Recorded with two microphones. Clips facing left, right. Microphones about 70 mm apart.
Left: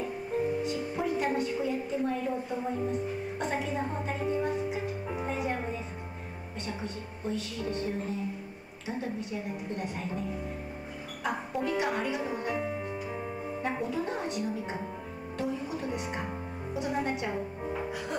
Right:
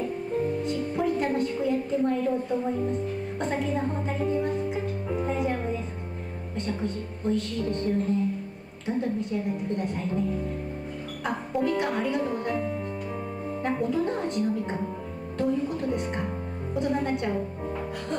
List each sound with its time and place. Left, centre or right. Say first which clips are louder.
0.0 s music: right 3 dB; centre
6.6 s speech: right 7 dB; centre
15.3 s music: right 7 dB; centre
16.7 s a woman's voice: right 5 dB; centre